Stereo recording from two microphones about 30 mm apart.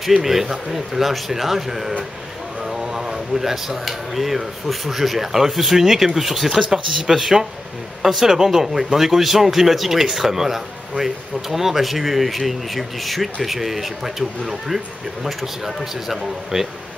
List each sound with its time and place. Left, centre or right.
0.2 s speech: centre